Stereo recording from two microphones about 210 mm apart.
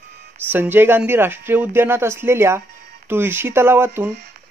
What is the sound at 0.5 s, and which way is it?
Speech, 10° right (ahead or behind).